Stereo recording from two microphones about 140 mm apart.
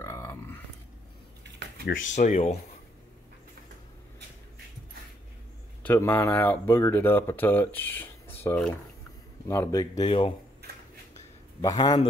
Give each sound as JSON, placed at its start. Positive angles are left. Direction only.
{"t": 0.0, "sound": "a sound", "side_deg": 20}
{"t": 1.9, "sound": "speech", "side_deg": 65}
{"t": 5.8, "sound": "speech", "side_deg": 15}
{"t": 10.0, "sound": "speech", "side_deg": 40}
{"t": 11.6, "sound": "speech", "side_deg": 30}